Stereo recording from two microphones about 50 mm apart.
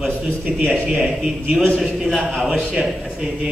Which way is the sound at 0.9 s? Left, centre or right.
Centre.